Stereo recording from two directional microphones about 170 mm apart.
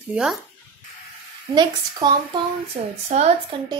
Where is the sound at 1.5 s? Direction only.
25° right (ahead or behind).